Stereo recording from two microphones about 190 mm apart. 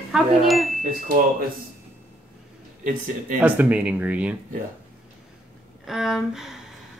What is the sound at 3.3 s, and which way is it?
Speech, 10° right (ahead or behind).